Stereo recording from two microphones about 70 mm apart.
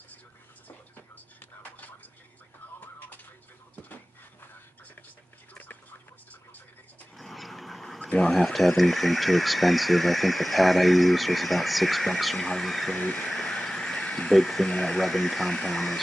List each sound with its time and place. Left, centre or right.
0.7 s whispering: left
5.5 s a sound: left
7.2 s a sound: centre
8.3 s speech: centre
12.9 s speech: centre
13.3 s vehicle: centre
14.7 s speech: centre